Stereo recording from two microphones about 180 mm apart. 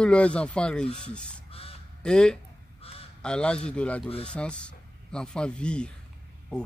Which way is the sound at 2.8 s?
30° left (ahead or behind).